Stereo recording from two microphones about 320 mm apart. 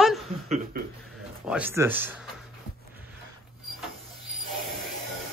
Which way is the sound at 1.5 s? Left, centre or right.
Centre.